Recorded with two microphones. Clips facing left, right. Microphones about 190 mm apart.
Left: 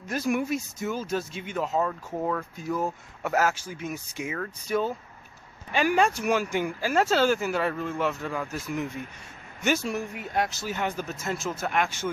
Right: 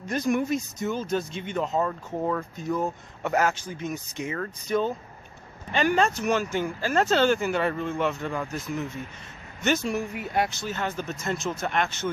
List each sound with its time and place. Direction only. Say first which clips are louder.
0.0 s speech: right 2 dB; 5° left (ahead or behind)